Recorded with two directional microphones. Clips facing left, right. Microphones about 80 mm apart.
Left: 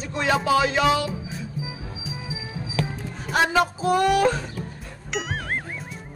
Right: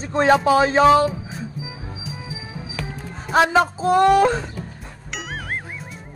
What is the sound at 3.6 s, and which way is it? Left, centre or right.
Speech, right.